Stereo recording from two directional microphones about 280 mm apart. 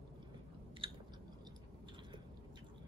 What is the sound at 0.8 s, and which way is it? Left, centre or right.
Chewing, centre.